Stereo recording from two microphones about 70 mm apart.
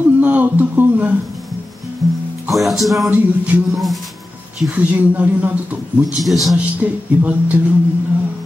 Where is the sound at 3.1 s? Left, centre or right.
Right.